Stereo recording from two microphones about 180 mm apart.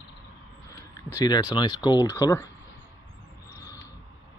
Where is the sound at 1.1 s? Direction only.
20° left (ahead or behind).